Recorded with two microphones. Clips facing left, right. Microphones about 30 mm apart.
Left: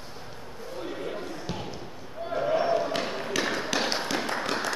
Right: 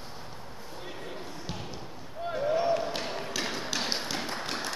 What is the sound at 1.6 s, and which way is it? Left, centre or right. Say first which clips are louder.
Basketball bounce: left 3 dB; centre.